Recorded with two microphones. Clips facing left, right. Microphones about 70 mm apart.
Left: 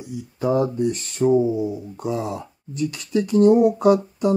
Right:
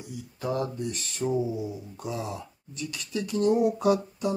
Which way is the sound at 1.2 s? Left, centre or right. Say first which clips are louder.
Left 10 dB; left.